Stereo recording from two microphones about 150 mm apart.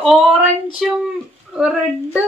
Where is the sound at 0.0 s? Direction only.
Centre (ahead or behind).